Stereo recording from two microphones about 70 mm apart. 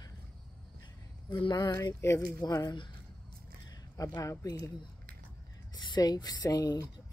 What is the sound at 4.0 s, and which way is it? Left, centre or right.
Speech, left.